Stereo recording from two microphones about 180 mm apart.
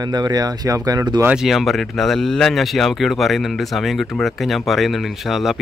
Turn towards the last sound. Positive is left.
turn(degrees=0)  # may be behind; listen again after turning